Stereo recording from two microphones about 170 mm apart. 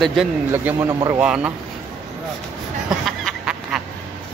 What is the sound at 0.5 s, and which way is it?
Speech, 15° right (ahead or behind).